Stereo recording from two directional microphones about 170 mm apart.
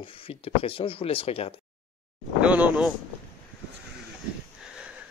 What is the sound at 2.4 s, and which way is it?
Speech, 10° right (ahead or behind).